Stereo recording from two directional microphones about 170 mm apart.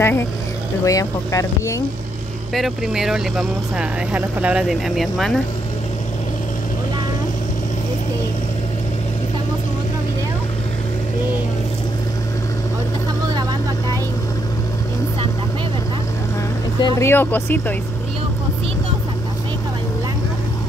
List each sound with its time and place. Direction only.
0.0 s speech: 15° left (ahead or behind)
2.5 s speech: centre (ahead or behind)
13.3 s vehicle: 25° right (ahead or behind)
17.0 s speech: 10° left (ahead or behind)